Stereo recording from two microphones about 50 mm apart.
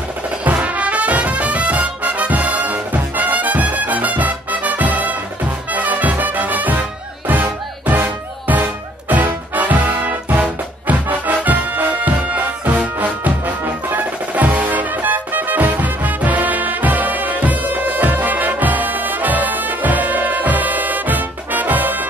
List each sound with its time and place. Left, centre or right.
0.6 s music: right